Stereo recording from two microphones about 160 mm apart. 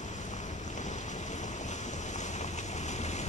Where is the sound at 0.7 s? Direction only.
50° left (ahead or behind).